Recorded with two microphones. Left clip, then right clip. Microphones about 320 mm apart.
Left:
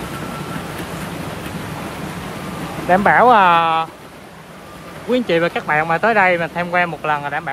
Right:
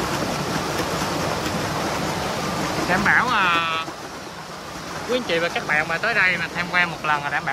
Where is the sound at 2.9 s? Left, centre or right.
Centre.